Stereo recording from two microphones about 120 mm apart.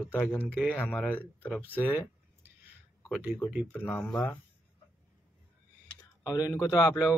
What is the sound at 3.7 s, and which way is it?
Speech, 20° left (ahead or behind).